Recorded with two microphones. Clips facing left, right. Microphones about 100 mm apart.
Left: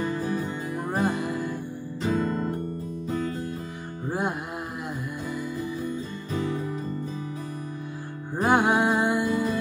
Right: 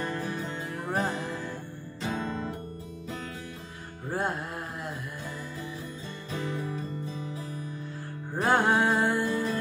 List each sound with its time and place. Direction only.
0.1 s music: 10° left (ahead or behind)
2.0 s music: 45° left (ahead or behind)
4.1 s music: 15° left (ahead or behind)
8.4 s music: 15° left (ahead or behind)